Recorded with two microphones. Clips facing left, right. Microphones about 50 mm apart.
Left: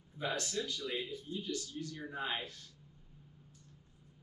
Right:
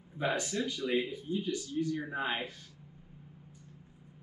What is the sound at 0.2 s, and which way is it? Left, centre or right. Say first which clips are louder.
Speech: right 5 dB; right.